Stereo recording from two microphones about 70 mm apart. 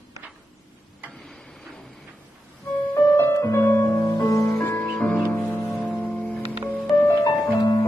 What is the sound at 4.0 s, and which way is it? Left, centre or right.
Music, left.